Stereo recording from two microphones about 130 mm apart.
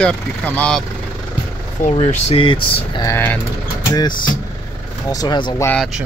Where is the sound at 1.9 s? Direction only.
45° left (ahead or behind).